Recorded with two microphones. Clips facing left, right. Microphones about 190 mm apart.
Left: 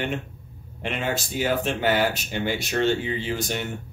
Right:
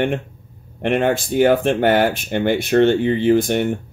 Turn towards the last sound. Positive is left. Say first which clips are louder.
# right 13 dB
turn(degrees=-55)  # may be behind; listen again after turning